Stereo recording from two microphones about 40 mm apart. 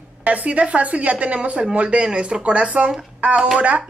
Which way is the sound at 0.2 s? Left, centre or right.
Right.